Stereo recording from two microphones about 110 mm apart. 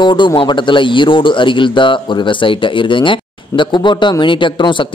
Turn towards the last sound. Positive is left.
turn(degrees=45)  # may be behind; listen again after turning